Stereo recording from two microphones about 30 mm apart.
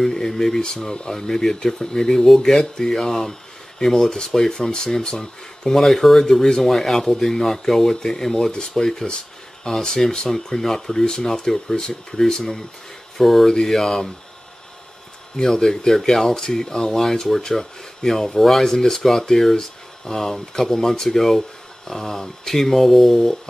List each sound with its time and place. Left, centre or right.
0.4 s speech: centre
2.2 s speech: centre; by 5.7 s left
5.7 s speech: centre
6.6 s speech: centre
13.2 s speech: centre
15.4 s speech: centre
15.9 s speech: centre
16.3 s speech: centre